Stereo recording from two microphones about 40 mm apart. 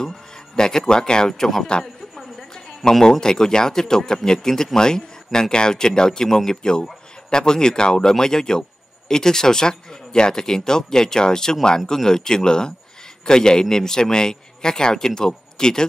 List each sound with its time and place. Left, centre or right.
0.6 s a man's voice: centre